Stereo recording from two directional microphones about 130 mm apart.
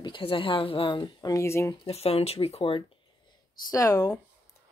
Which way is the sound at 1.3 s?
20° left (ahead or behind).